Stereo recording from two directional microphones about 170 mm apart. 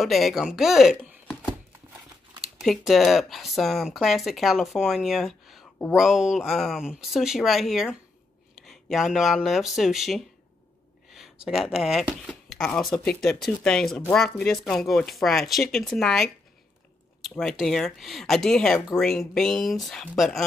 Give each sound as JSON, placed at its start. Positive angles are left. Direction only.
{"t": 0.0, "sound": "speech", "side_deg": 0}
{"t": 2.6, "sound": "speech", "side_deg": 0}
{"t": 17.4, "sound": "speech", "side_deg": 0}